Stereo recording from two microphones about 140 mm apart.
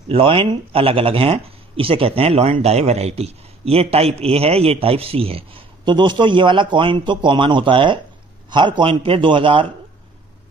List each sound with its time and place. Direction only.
0.1 s speech: 40° right (ahead or behind)